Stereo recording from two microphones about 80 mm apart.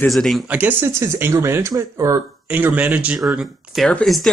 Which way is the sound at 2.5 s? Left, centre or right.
Right.